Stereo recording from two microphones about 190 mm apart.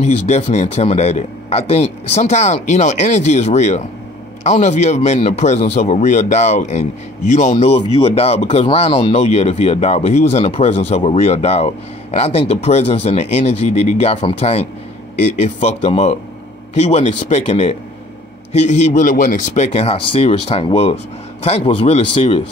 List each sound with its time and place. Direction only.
0.0 s speech: 35° left (ahead or behind)